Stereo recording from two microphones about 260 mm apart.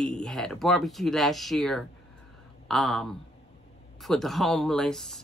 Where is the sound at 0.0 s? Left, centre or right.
Centre.